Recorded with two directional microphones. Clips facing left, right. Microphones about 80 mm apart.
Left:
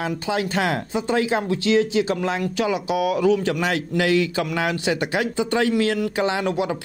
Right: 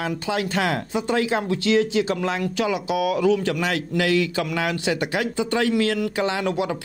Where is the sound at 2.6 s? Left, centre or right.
Left.